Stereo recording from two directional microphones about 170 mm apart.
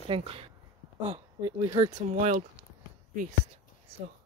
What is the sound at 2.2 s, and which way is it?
Speech, 45° right (ahead or behind).